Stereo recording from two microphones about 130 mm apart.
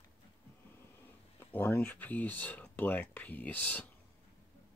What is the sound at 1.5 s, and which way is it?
Speech, 15° left (ahead or behind).